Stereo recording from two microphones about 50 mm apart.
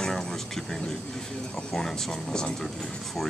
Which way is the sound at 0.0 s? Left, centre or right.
Centre.